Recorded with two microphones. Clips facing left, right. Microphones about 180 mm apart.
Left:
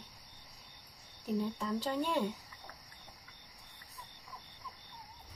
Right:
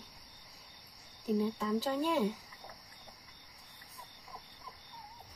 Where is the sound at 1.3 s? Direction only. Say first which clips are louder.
Right 3 dB; centre (ahead or behind).